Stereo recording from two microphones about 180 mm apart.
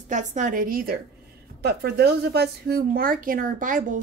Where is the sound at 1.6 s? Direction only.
65° right (ahead or behind).